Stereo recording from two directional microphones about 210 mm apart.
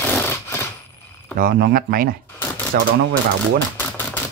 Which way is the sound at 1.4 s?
45° right (ahead or behind).